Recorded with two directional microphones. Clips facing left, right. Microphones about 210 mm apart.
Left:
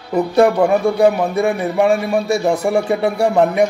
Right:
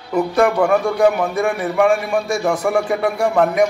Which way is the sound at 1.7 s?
35° left (ahead or behind).